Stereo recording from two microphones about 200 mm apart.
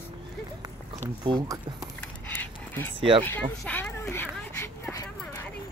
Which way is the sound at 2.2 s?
10° left (ahead or behind).